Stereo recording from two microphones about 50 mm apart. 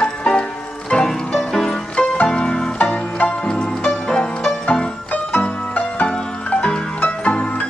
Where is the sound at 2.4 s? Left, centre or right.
Centre.